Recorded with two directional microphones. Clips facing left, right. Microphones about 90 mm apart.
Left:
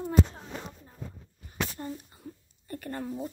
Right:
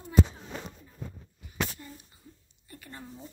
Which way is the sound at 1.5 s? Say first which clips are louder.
Left 1 dB; 45° left (ahead or behind).